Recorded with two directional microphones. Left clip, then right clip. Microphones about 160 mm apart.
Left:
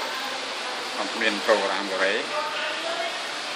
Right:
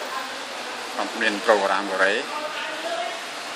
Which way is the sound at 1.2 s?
40° right (ahead or behind).